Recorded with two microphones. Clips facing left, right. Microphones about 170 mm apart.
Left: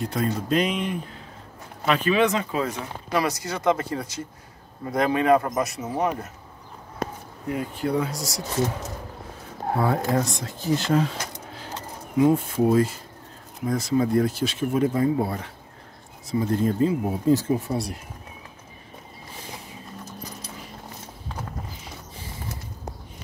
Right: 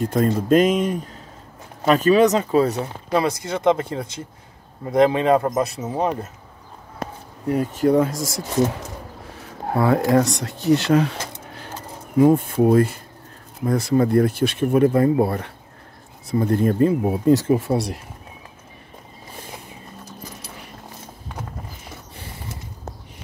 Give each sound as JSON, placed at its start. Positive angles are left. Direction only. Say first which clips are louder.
{"t": 0.0, "sound": "speech", "louder": "right 6 dB", "side_deg": -45}
{"t": 7.4, "sound": "speech", "louder": "right 8 dB", "side_deg": -40}
{"t": 9.8, "sound": "speech", "louder": "right 6 dB", "side_deg": -75}
{"t": 12.2, "sound": "speech", "louder": "right 4 dB", "side_deg": -50}